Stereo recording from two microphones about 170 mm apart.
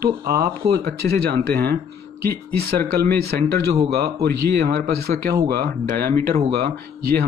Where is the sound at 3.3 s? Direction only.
55° right (ahead or behind).